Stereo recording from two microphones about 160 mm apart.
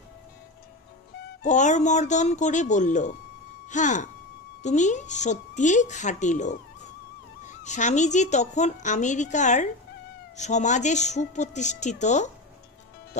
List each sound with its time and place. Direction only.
1.4 s a woman's voice: 50° left (ahead or behind)